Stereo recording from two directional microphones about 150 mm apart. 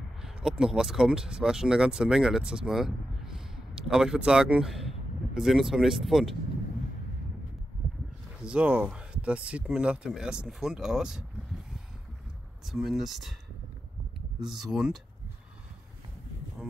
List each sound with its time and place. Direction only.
0.2 s speech: 5° right (ahead or behind)
8.5 s speech: 5° right (ahead or behind)
12.6 s speech: centre (ahead or behind)
14.6 s speech: 5° right (ahead or behind)